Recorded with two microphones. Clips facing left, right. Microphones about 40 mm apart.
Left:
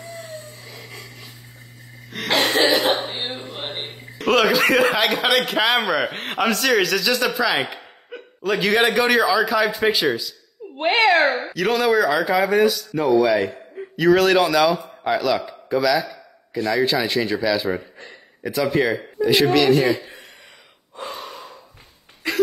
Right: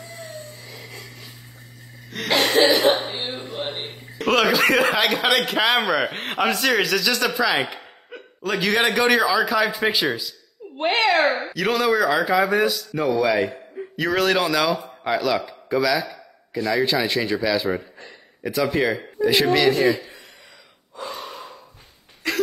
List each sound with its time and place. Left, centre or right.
0.2 s a sound: centre
2.0 s cough: centre
4.2 s speech: centre
19.7 s a man's voice: left
21.1 s gasp: centre
22.2 s a sound: centre